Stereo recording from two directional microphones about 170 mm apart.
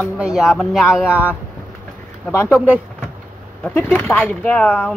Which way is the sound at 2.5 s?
10° right (ahead or behind).